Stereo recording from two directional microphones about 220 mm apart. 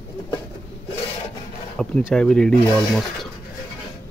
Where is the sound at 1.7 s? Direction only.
Centre (ahead or behind).